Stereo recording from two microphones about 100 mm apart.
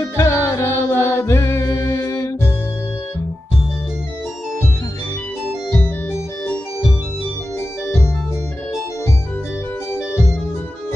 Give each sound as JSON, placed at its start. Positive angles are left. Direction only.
{"t": 0.2, "sound": "music", "side_deg": 30}